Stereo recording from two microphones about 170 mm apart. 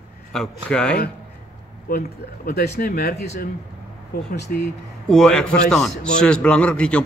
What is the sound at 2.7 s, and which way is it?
Speech, 60° left (ahead or behind).